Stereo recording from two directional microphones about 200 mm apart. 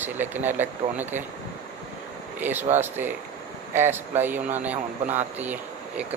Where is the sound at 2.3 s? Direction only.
10° right (ahead or behind).